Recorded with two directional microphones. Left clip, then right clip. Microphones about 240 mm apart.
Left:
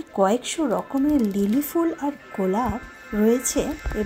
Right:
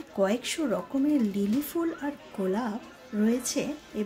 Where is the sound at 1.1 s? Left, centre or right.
Centre.